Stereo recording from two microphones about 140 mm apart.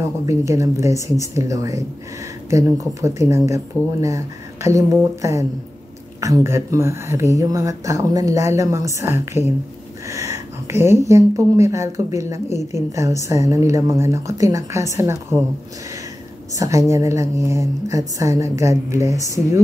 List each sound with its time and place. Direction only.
0.3 s speech: 20° right (ahead or behind)
16.5 s speech: 20° right (ahead or behind)